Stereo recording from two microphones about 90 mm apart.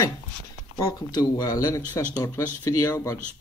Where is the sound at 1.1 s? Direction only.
45° left (ahead or behind).